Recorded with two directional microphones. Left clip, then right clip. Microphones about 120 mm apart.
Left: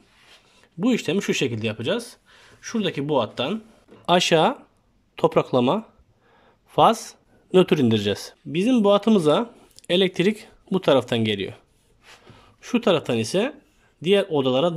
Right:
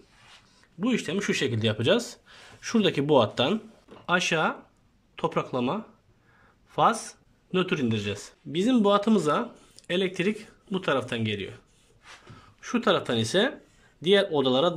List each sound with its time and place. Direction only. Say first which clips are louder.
0.6 s speech: left 5 dB; 35° left (ahead or behind)
1.5 s speech: right 1 dB; 5° left (ahead or behind)
4.0 s speech: left 7 dB; 40° left (ahead or behind)
7.5 s a man's voice: left 9 dB; 45° left (ahead or behind)
8.5 s speech: left 4 dB; 15° left (ahead or behind)